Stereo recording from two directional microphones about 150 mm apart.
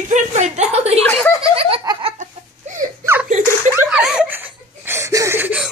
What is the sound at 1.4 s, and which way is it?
Giggle, 40° right (ahead or behind).